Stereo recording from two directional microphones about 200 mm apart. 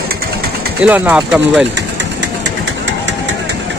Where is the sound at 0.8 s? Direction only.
5° right (ahead or behind).